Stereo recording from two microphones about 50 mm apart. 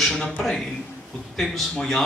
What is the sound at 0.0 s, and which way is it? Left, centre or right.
A man's voice, centre.